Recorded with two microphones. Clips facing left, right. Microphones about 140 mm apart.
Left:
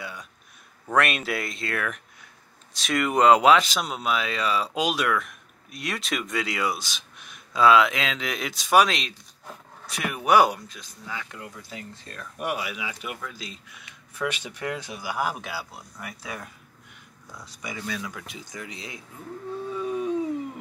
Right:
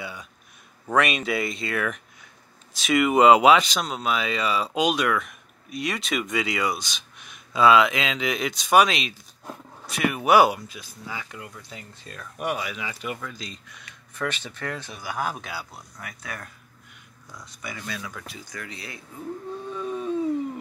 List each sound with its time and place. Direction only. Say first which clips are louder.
0.0 s speech: right 1 dB; centre (ahead or behind)
17.6 s speech: left 2 dB; 10° left (ahead or behind)
19.7 s a sound: left 1 dB; 10° left (ahead or behind)